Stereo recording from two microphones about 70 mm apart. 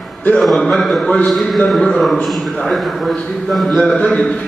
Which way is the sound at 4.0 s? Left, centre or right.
Centre.